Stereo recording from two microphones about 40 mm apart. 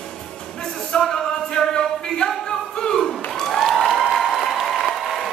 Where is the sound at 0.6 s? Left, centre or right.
Centre.